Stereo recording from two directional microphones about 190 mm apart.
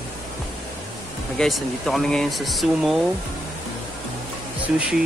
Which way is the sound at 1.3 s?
Centre (ahead or behind).